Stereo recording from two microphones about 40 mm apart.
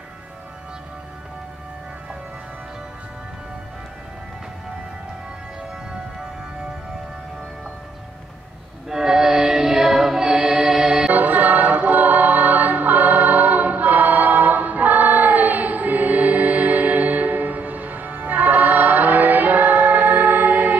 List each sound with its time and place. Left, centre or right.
8.8 s choir: centre
11.1 s a capella: right